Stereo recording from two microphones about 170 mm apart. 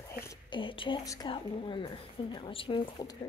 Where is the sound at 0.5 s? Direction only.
30° left (ahead or behind).